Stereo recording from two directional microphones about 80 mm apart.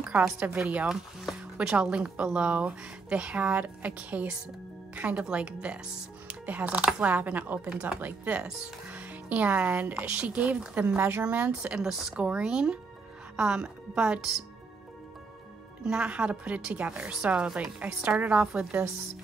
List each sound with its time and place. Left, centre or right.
0.0 s a woman's voice: centre
11.0 s speech: right
11.2 s speech: right
15.8 s speech: centre